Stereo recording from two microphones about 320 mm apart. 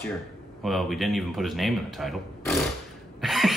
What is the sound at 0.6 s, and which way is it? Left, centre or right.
Speech, centre.